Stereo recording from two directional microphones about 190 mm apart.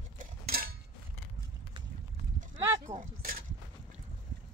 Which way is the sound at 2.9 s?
45° right (ahead or behind).